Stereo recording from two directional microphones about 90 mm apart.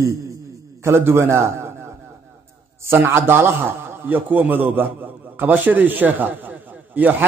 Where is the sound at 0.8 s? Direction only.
25° right (ahead or behind).